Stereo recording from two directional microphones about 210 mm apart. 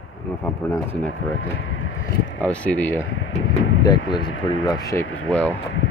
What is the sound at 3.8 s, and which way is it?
Speech, 20° left (ahead or behind).